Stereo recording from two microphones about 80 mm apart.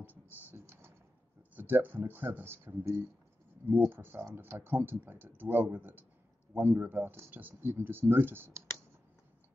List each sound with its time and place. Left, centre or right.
0.0 s typing: right
1.5 s speech: right